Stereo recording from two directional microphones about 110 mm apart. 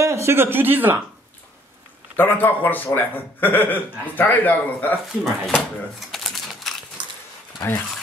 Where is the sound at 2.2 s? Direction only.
15° left (ahead or behind).